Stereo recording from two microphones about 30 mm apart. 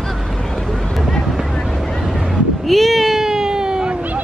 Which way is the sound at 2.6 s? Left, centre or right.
Centre.